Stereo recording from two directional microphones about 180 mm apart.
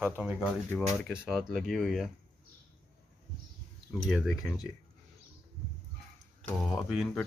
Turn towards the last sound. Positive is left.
turn(degrees=0)  # may be behind; listen again after turning